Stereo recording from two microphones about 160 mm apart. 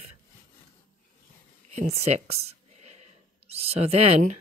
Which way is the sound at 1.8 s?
45° right (ahead or behind).